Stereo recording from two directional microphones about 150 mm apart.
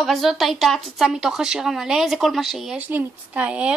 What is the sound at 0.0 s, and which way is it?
A woman's voice, centre (ahead or behind).